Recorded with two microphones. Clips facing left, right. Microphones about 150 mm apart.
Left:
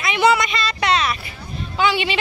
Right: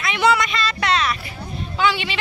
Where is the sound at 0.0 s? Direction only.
5° left (ahead or behind).